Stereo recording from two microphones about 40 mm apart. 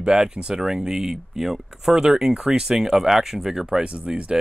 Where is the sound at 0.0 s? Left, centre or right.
Centre.